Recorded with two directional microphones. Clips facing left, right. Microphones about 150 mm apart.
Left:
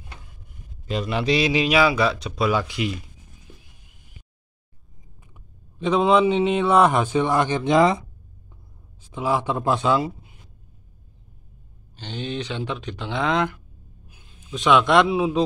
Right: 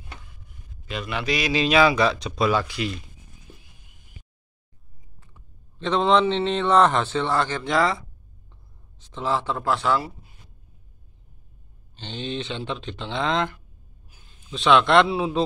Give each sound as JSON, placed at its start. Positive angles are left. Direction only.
{"t": 0.8, "sound": "a man's voice", "side_deg": 35}
{"t": 1.5, "sound": "speech", "side_deg": 10}
{"t": 5.3, "sound": "a man's voice", "side_deg": 10}
{"t": 12.0, "sound": "speech", "side_deg": 10}